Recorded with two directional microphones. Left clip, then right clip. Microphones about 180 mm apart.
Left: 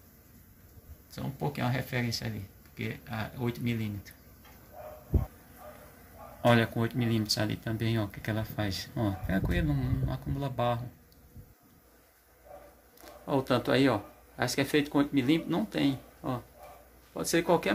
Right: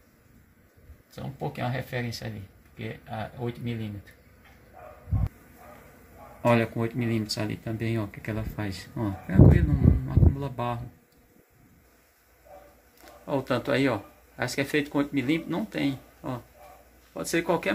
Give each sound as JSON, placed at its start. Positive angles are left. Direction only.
{"t": 1.6, "sound": "speech", "side_deg": -15}
{"t": 6.4, "sound": "speech", "side_deg": 10}
{"t": 13.2, "sound": "speech", "side_deg": 0}